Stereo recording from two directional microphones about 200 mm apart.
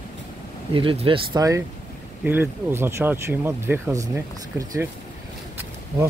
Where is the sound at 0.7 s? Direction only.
25° right (ahead or behind).